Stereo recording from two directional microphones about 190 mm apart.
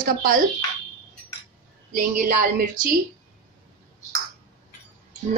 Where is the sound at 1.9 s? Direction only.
45° right (ahead or behind).